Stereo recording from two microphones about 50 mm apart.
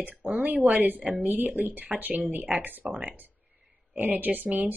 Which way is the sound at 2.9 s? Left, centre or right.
Right.